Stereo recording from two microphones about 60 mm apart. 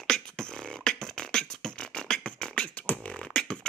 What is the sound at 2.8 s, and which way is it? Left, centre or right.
Beatboxing, left.